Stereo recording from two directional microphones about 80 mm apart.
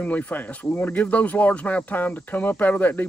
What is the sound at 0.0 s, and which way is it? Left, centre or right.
Speech, centre.